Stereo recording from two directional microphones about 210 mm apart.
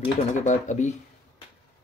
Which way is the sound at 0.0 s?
30° left (ahead or behind).